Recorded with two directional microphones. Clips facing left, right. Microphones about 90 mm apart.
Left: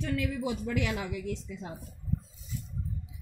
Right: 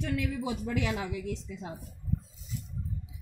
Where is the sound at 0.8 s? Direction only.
25° right (ahead or behind).